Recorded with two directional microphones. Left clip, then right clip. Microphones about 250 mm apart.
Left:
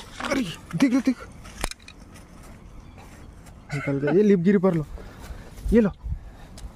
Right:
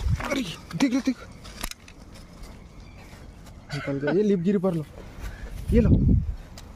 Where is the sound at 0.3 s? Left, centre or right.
Left.